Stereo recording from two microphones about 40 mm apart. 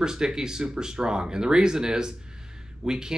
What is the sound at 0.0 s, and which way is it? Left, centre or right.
Speech, centre.